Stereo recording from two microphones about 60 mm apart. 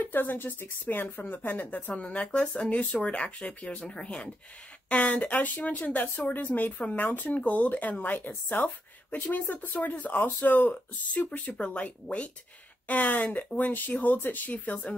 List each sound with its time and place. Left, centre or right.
0.0 s speech: left